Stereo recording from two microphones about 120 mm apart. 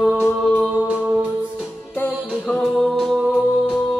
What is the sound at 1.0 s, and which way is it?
Music, 10° right (ahead or behind).